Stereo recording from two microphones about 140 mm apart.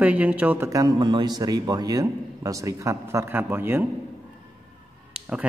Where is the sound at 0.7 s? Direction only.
25° right (ahead or behind).